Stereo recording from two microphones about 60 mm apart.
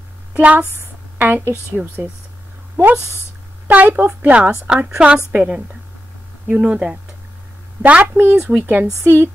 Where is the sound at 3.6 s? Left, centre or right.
Right.